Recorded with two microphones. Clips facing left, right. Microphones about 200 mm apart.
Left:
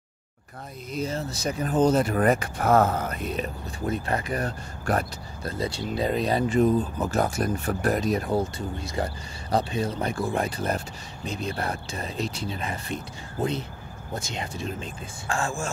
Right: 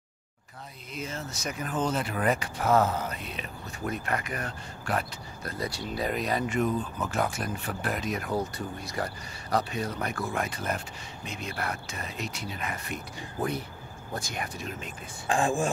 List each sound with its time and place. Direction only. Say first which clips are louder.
0.9 s speech: left 7 dB; 35° left (ahead or behind)
3.8 s speech: left 4 dB; 30° left (ahead or behind)
5.4 s speech: left 5 dB; 25° left (ahead or behind)
15.2 s speech: right 3 dB; 15° right (ahead or behind)